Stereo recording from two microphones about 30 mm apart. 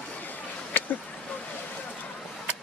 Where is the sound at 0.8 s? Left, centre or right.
Left.